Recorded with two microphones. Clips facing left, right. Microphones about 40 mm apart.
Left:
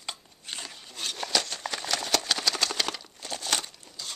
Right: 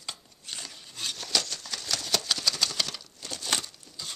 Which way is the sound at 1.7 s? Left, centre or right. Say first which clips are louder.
Left 2 dB; centre.